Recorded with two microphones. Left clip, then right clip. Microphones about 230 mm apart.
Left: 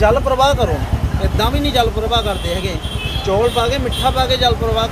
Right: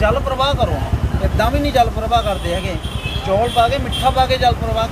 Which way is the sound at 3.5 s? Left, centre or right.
Centre.